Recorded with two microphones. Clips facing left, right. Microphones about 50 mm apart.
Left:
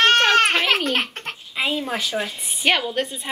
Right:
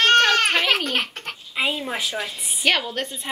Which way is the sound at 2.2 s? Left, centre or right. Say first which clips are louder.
Left 1 dB; centre.